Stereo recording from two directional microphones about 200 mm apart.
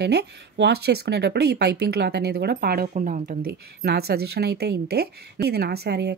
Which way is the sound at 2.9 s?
40° right (ahead or behind).